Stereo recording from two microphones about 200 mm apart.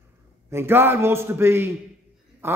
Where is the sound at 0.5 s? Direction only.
10° right (ahead or behind).